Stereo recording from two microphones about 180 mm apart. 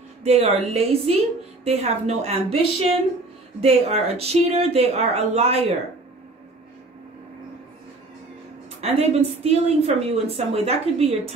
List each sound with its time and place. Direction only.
0.2 s a woman's voice: 35° right (ahead or behind)
8.8 s a woman's voice: 35° right (ahead or behind)